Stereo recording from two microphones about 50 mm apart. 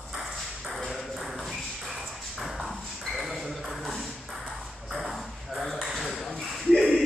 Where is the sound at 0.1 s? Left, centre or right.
Centre.